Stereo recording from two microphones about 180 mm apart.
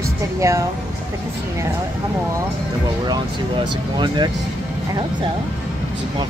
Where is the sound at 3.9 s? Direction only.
25° right (ahead or behind).